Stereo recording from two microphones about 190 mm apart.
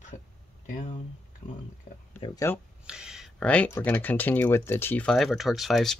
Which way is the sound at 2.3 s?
15° left (ahead or behind).